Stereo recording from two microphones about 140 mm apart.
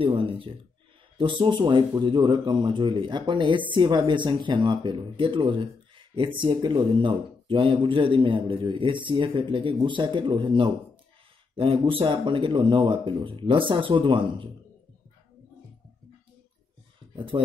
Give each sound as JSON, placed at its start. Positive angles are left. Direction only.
{"t": 0.0, "sound": "speech", "side_deg": -40}
{"t": 17.1, "sound": "speech", "side_deg": -35}